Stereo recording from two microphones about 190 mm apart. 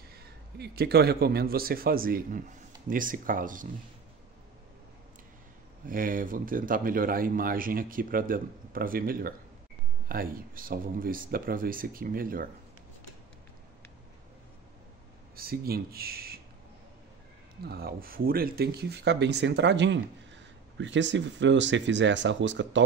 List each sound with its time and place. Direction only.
0.1 s a man's voice: 55° right (ahead or behind)
5.9 s speech: 45° right (ahead or behind)
15.3 s speech: 50° right (ahead or behind)
17.6 s speech: 55° right (ahead or behind); by 22.8 s 70° right (ahead or behind)